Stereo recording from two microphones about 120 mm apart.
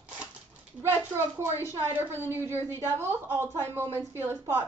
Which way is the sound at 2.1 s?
20° left (ahead or behind).